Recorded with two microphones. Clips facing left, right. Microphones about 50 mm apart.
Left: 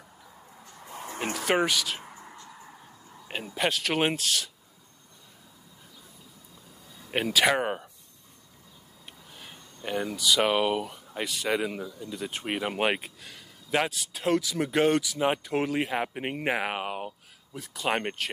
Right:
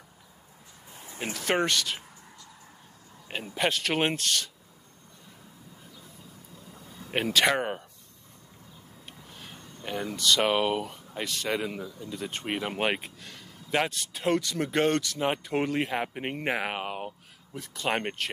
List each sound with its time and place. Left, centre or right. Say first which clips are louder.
0.9 s a sound: left 9 dB; left
1.3 s speech: left 1 dB; centre
2.0 s a sound: left 5 dB; left
3.3 s speech: even; centre
7.1 s speech: left 1 dB; centre
9.8 s speech: left 1 dB; centre